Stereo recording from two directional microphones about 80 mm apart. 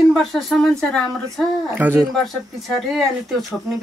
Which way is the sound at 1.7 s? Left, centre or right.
Right.